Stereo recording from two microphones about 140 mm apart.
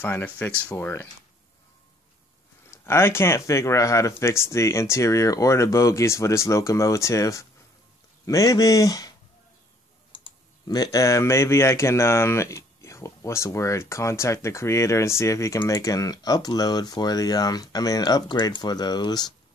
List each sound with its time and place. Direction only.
0.0 s speech: 10° left (ahead or behind)
2.7 s speech: 20° left (ahead or behind)
10.1 s speech: 30° left (ahead or behind)